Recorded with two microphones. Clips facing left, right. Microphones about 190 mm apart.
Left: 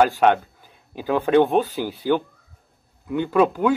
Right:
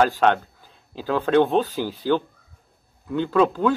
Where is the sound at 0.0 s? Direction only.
10° left (ahead or behind).